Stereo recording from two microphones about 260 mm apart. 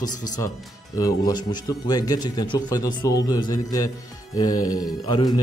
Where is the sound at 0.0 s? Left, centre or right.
Centre.